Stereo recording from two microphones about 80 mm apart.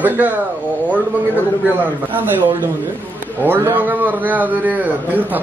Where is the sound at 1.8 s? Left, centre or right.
Right.